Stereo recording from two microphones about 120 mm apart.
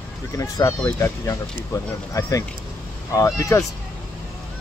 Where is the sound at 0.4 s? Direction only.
25° left (ahead or behind).